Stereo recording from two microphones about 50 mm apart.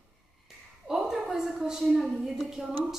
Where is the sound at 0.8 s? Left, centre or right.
Centre.